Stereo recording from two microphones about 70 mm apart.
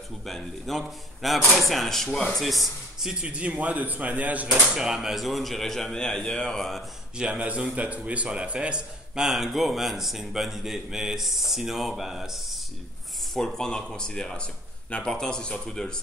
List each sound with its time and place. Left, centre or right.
0.2 s a man's voice: centre; by 4.5 s right
4.6 s a man's voice: centre
7.2 s a man's voice: centre